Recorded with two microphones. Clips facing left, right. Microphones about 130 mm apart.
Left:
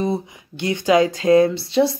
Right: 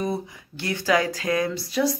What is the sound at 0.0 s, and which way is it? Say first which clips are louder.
Speech: left 5 dB; 20° left (ahead or behind).